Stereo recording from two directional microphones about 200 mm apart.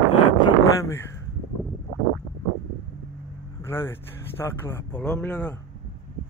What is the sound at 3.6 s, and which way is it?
Speech, 10° left (ahead or behind).